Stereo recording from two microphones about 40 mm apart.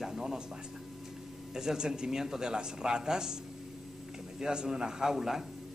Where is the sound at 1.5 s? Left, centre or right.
Centre.